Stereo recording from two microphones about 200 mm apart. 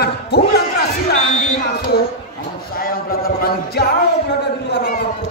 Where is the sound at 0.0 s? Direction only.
55° left (ahead or behind).